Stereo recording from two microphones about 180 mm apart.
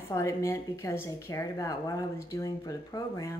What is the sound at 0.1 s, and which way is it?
Speech, 15° left (ahead or behind).